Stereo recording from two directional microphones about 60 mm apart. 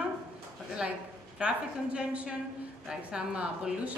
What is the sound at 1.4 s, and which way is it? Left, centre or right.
A woman's voice, centre.